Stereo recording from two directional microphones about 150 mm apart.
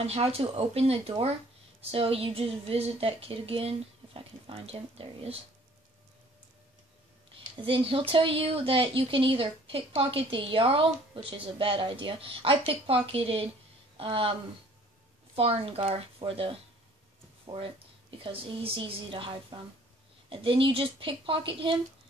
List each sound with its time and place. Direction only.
0.0 s speech: 40° right (ahead or behind)
7.5 s speech: 35° right (ahead or behind)
15.3 s speech: 40° right (ahead or behind)
18.2 s speech: 35° right (ahead or behind)